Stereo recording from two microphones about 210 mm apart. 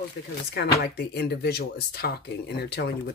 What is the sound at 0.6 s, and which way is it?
Speech, 50° left (ahead or behind).